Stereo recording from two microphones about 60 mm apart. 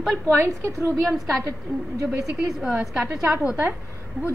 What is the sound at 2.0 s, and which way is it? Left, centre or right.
Speech, centre.